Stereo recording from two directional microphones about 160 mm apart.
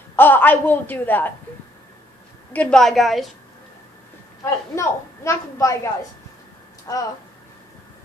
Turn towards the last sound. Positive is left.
turn(degrees=20)  # may be behind; listen again after turning